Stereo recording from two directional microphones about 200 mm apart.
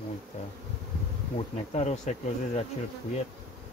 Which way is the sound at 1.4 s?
35° left (ahead or behind).